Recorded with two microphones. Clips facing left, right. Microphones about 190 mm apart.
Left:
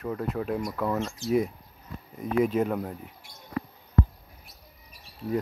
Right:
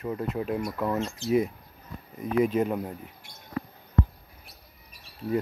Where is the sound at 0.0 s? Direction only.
5° right (ahead or behind).